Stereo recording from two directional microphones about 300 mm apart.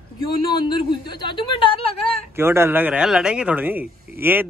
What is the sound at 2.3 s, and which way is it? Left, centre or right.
Speech, centre.